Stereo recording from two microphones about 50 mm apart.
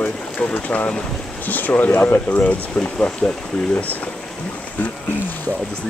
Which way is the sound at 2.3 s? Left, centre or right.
Left.